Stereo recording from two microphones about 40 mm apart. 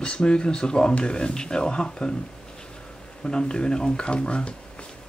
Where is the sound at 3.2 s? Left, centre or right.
Left.